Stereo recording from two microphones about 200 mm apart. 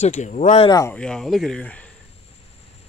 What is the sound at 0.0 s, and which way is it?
Speech, 35° left (ahead or behind).